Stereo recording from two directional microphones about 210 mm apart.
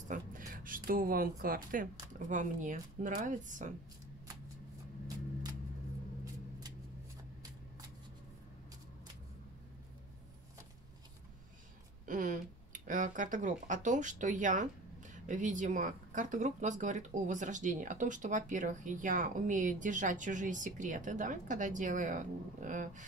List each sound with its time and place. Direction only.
0.1 s speech: 40° right (ahead or behind)
12.1 s speech: 40° right (ahead or behind)